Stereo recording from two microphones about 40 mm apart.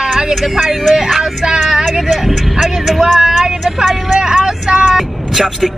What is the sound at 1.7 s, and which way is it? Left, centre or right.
Vehicle, centre.